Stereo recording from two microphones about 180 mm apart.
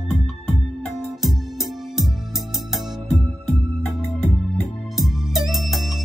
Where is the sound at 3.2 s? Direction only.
20° right (ahead or behind).